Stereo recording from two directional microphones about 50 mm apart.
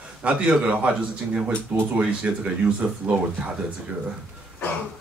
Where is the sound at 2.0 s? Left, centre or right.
Right.